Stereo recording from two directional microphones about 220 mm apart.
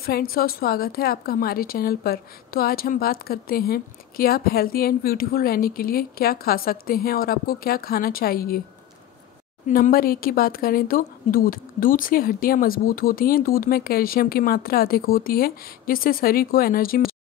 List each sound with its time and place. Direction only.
0.0 s a woman's voice: 45° left (ahead or behind)
9.7 s speech: 40° left (ahead or behind)